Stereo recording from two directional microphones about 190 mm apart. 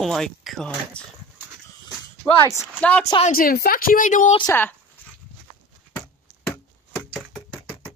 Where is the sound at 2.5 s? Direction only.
10° left (ahead or behind).